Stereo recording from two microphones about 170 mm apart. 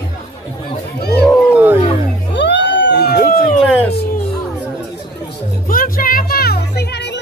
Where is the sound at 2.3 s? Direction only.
90° left; by 3.4 s 70° left (ahead or behind).